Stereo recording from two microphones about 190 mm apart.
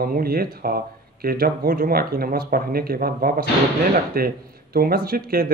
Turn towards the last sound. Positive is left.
turn(degrees=-50)  # may be behind; listen again after turning